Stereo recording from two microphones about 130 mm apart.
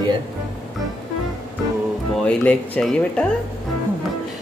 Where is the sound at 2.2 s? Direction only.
10° left (ahead or behind).